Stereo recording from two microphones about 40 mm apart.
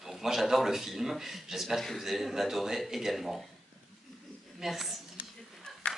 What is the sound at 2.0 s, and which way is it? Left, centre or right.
Speech, centre.